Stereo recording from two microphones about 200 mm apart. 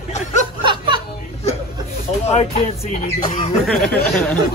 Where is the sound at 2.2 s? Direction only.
30° left (ahead or behind).